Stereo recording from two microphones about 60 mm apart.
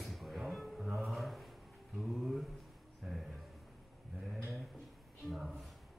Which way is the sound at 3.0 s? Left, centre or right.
Centre.